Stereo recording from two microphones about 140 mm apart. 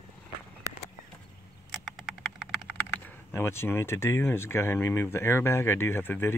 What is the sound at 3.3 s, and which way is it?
Speech, 15° left (ahead or behind).